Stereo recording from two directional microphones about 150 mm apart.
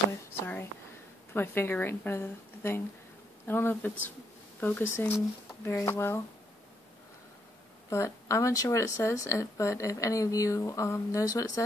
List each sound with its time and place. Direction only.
1.3 s speech: 15° left (ahead or behind)
7.9 s speech: 20° left (ahead or behind)